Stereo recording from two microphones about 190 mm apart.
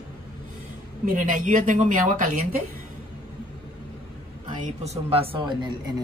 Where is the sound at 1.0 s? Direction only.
45° right (ahead or behind).